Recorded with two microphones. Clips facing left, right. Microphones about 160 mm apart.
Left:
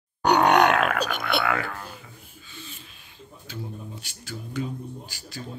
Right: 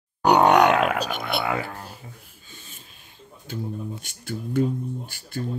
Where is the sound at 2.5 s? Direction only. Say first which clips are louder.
Left 4 dB; 45° right (ahead or behind).